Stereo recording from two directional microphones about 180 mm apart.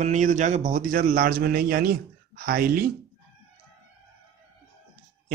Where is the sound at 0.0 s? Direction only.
45° right (ahead or behind).